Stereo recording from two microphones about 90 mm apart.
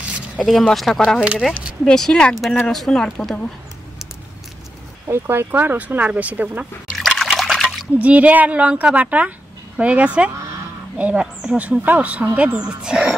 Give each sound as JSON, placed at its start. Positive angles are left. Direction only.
{"t": 0.4, "sound": "a woman's voice", "side_deg": 0}
{"t": 1.5, "sound": "speech", "side_deg": -15}
{"t": 1.9, "sound": "a woman's voice", "side_deg": 5}
{"t": 5.0, "sound": "speech", "side_deg": -30}
{"t": 7.0, "sound": "liquid", "side_deg": 0}
{"t": 8.0, "sound": "a woman's voice", "side_deg": -15}